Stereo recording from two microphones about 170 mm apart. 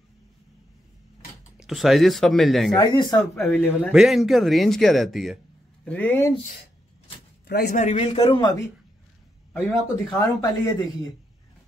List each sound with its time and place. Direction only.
1.6 s speech: centre (ahead or behind)
2.7 s speech: 25° left (ahead or behind)
3.4 s speech: 10° left (ahead or behind)
3.9 s speech: centre (ahead or behind)
5.9 s speech: 10° left (ahead or behind)
7.4 s speech: 65° left (ahead or behind)
7.8 s a man's voice: 40° left (ahead or behind); by 8.6 s 25° left (ahead or behind)
9.5 s speech: centre (ahead or behind)
10.1 s speech: 20° left (ahead or behind)